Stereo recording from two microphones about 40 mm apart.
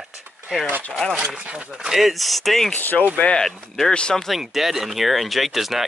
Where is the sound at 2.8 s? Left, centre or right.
Left.